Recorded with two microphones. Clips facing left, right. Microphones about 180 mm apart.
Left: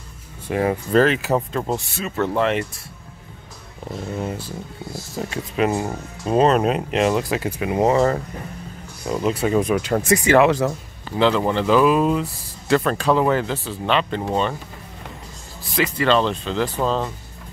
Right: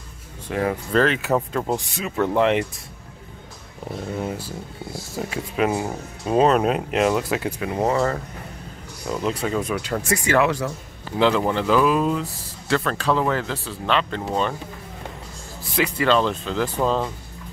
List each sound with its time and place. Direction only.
0.5 s speech: 20° left (ahead or behind)
0.9 s speech: 5° left (ahead or behind)
1.7 s speech: 15° right (ahead or behind)
4.2 s speech: 5° right (ahead or behind)
7.6 s speech: 15° left (ahead or behind)
9.1 s speech: 5° left (ahead or behind)
9.5 s speech: 20° left (ahead or behind)
11.1 s speech: 10° right (ahead or behind)
11.6 s speech: 10° left (ahead or behind)
13.5 s speech: 5° left (ahead or behind)
15.7 s speech: 5° right (ahead or behind)